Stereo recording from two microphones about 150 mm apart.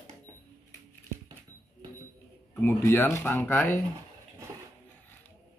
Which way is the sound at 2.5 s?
15° left (ahead or behind).